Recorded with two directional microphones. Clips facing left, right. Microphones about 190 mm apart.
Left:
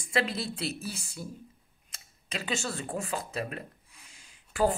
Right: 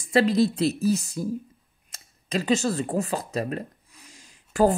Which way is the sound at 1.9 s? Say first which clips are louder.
Right 10 dB; 40° right (ahead or behind).